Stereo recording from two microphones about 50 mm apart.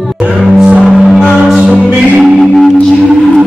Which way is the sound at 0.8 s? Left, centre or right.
Centre.